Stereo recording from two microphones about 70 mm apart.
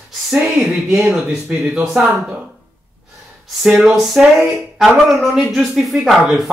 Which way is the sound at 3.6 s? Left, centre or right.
Centre.